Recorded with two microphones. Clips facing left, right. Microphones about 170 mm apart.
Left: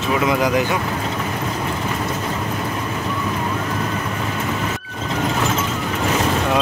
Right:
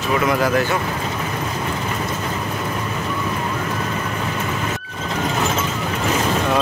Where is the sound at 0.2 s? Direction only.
20° left (ahead or behind).